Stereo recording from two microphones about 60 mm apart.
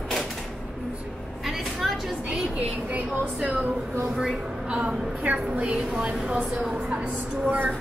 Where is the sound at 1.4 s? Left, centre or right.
Centre.